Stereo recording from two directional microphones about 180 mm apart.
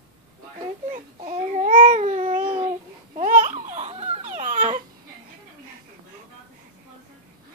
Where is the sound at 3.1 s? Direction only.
40° right (ahead or behind).